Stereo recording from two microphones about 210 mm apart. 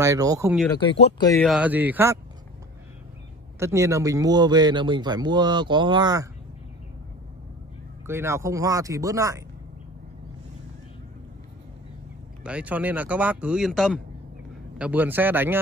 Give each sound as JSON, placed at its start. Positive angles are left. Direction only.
{"t": 0.0, "sound": "speech", "side_deg": -15}
{"t": 0.7, "sound": "speech", "side_deg": 20}
{"t": 1.4, "sound": "speech", "side_deg": -5}
{"t": 3.5, "sound": "speech", "side_deg": -15}
{"t": 8.1, "sound": "speech", "side_deg": -10}
{"t": 12.4, "sound": "speech", "side_deg": -5}